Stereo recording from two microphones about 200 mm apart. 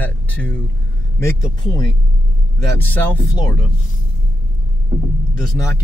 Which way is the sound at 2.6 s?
10° left (ahead or behind).